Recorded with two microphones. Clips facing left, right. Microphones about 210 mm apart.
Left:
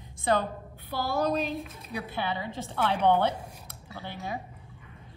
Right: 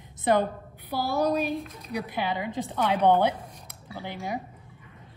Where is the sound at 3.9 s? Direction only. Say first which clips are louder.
Right 3 dB; 15° right (ahead or behind).